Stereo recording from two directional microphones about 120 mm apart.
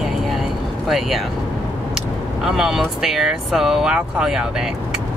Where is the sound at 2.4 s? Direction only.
5° right (ahead or behind).